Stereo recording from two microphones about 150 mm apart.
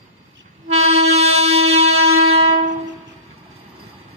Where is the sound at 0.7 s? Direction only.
45° right (ahead or behind).